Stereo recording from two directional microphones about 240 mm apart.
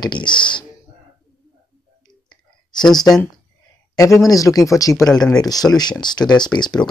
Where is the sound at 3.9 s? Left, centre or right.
Centre.